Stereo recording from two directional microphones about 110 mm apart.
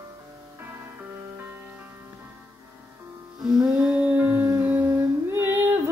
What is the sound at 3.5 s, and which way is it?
Music, 5° right (ahead or behind).